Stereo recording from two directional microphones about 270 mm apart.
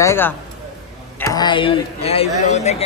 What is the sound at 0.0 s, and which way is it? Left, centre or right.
A man's voice, centre.